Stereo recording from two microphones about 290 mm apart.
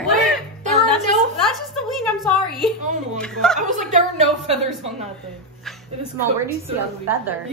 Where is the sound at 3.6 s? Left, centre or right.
Right.